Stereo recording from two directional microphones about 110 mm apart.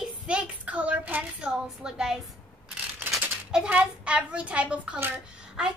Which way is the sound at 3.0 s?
20° right (ahead or behind).